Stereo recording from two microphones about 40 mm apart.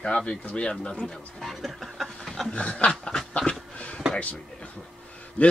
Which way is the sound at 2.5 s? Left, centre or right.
Left.